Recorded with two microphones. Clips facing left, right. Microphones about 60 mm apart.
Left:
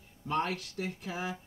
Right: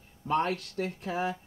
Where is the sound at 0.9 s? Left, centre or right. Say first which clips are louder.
Right 5 dB; centre.